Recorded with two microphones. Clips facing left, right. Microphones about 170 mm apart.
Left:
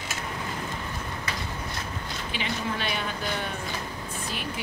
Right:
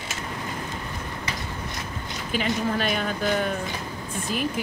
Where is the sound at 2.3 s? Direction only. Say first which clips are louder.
Right 7 dB; 45° right (ahead or behind).